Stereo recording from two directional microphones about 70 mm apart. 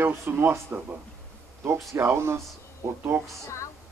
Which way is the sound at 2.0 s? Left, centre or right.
Right.